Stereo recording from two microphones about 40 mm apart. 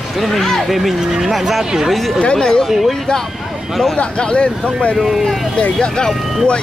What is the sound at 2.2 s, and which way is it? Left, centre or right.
Speech, left.